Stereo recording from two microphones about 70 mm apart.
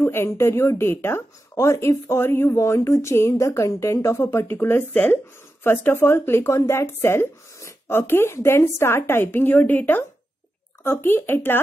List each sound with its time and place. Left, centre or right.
0.0 s speech: left